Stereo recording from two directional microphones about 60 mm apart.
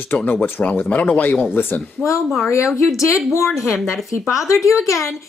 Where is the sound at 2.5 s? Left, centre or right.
Left.